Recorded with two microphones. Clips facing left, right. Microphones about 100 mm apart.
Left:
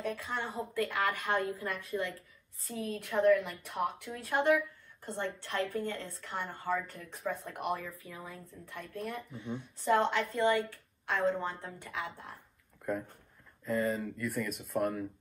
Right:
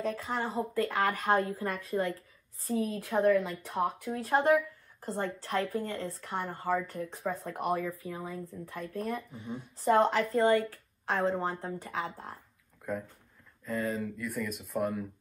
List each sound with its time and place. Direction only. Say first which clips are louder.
0.0 s a woman's voice: right 4 dB; 35° right (ahead or behind)
12.9 s speech: left 1 dB; centre (ahead or behind)